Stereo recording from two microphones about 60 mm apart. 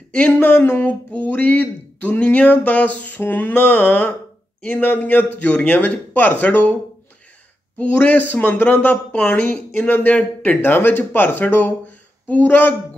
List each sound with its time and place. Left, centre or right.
0.4 s a man's voice: left
7.7 s speech: left
9.8 s a man's voice: left